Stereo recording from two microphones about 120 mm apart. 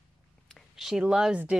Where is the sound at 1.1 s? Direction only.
5° right (ahead or behind).